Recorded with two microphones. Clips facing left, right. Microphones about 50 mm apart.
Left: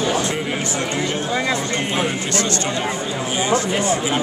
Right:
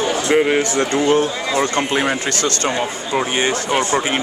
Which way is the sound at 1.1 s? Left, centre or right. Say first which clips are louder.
Right 4 dB; right.